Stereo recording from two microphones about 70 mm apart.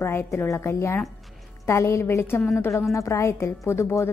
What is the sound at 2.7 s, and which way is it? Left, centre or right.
A woman's voice, left.